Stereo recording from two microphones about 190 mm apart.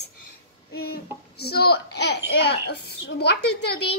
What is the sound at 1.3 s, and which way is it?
A child's voice, 55° left (ahead or behind).